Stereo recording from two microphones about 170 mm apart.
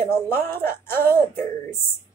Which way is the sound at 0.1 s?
15° left (ahead or behind).